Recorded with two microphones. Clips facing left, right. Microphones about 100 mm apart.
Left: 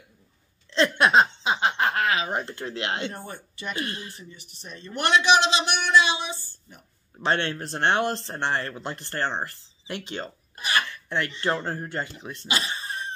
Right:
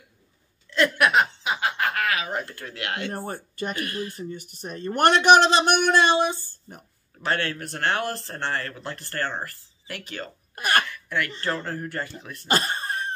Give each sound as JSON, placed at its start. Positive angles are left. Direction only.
{"t": 0.7, "sound": "snicker", "side_deg": 25}
{"t": 3.1, "sound": "a man's voice", "side_deg": -45}
{"t": 3.7, "sound": "speech", "side_deg": 25}
{"t": 4.1, "sound": "a man's voice", "side_deg": -50}
{"t": 7.2, "sound": "speech", "side_deg": 25}
{"t": 10.5, "sound": "cough", "side_deg": -55}
{"t": 10.9, "sound": "a sound", "side_deg": 30}
{"t": 11.4, "sound": "speech", "side_deg": 25}
{"t": 12.4, "sound": "throat clearing", "side_deg": -50}